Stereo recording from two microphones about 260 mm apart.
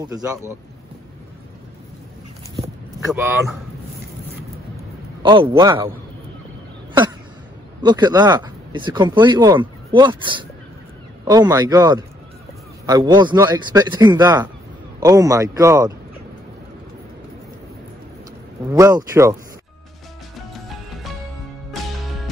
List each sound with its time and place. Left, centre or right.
0.0 s speech: centre
5.2 s a man's voice: centre
7.8 s speech: centre
18.7 s speech: centre
21.7 s music: centre